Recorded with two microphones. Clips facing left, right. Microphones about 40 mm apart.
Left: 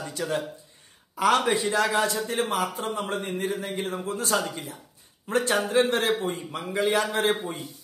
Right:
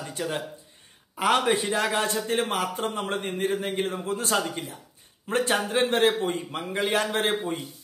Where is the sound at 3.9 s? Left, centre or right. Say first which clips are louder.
Right 1 dB; right.